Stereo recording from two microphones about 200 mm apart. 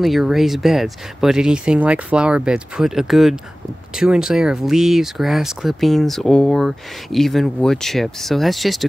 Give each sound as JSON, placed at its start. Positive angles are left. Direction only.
{"t": 0.0, "sound": "speech", "side_deg": 0}